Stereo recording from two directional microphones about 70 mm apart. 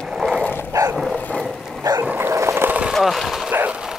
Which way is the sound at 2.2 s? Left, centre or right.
Right.